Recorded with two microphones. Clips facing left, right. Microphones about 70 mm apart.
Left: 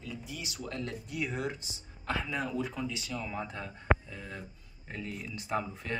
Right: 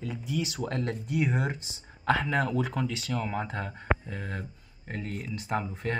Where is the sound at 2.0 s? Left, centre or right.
Right.